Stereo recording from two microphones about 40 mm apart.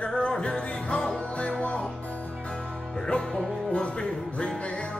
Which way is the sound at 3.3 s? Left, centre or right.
Left.